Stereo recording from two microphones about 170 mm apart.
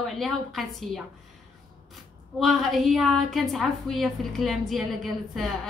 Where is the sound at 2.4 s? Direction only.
Centre (ahead or behind).